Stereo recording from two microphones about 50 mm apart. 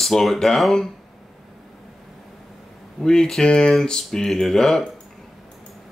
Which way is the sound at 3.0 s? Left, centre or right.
Centre.